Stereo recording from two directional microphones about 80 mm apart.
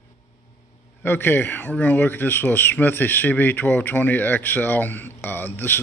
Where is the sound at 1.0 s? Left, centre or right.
Left.